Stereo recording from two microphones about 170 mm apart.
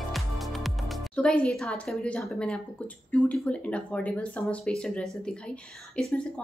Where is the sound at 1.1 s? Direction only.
5° left (ahead or behind).